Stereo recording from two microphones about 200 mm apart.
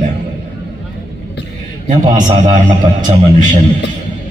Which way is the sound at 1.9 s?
40° right (ahead or behind).